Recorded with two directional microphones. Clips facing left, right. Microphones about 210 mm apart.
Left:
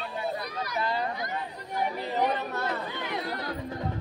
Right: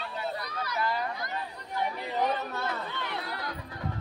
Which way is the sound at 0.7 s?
25° left (ahead or behind).